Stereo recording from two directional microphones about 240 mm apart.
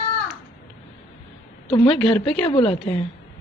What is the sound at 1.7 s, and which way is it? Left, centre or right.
A woman's voice, left.